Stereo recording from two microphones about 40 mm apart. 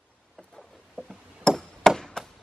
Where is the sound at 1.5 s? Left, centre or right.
Centre.